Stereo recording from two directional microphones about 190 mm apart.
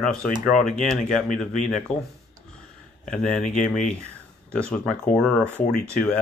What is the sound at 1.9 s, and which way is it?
Speech, 35° left (ahead or behind).